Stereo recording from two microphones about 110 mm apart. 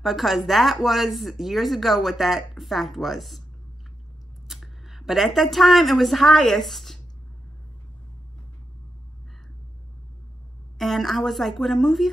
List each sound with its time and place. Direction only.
0.0 s speech: centre (ahead or behind)
4.5 s speech: centre (ahead or behind)
10.8 s speech: centre (ahead or behind)